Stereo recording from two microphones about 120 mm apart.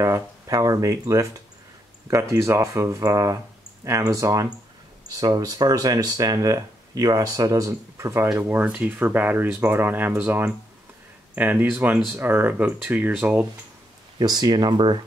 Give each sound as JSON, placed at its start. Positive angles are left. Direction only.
{"t": 0.0, "sound": "speech", "side_deg": -30}
{"t": 14.1, "sound": "speech", "side_deg": -35}